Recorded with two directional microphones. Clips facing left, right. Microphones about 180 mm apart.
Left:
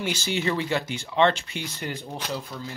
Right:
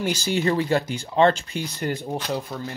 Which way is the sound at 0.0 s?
40° right (ahead or behind).